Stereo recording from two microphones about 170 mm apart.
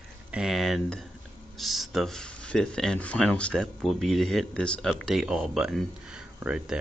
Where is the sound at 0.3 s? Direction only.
Centre (ahead or behind).